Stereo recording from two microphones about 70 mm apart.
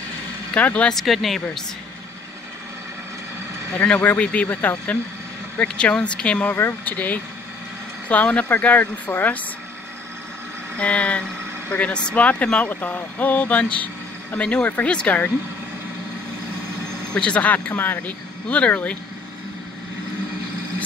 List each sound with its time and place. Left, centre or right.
0.6 s speech: centre
0.9 s speech: centre
3.7 s speech: centre
6.5 s speech: left
10.8 s speech: centre
17.1 s speech: centre